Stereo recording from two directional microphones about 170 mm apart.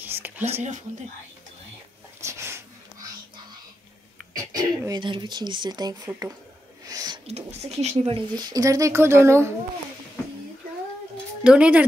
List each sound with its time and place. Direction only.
0.0 s whispering: 10° right (ahead or behind)
2.2 s wheeze: 15° right (ahead or behind)
4.4 s speech: 20° right (ahead or behind)
6.9 s a sound: 20° right (ahead or behind)
7.2 s speech: 40° right (ahead or behind)
8.4 s speech: 20° right (ahead or behind)
11.4 s speech: 5° right (ahead or behind)